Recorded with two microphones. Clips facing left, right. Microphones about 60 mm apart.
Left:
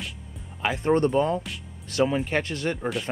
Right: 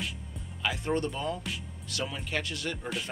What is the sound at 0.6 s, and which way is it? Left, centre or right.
Speech, left.